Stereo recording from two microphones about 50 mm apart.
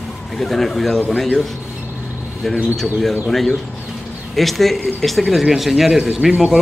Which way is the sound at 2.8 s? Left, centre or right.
Centre.